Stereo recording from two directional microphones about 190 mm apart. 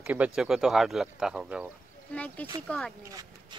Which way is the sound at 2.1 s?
5° left (ahead or behind).